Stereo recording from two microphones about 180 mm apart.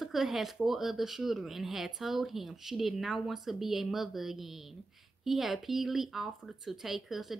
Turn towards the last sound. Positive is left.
turn(degrees=0)  # may be behind; listen again after turning